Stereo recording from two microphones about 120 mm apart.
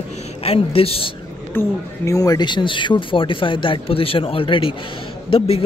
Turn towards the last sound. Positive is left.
turn(degrees=55)  # may be behind; listen again after turning